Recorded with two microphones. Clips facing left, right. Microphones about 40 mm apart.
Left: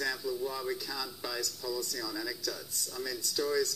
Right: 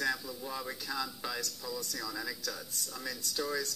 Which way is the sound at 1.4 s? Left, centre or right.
Right.